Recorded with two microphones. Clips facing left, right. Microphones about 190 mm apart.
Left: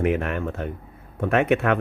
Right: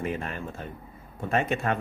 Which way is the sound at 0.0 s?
65° left (ahead or behind).